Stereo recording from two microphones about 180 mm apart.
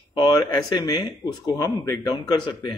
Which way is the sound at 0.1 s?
25° left (ahead or behind).